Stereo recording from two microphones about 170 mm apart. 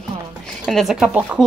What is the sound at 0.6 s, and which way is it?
Speech, centre (ahead or behind).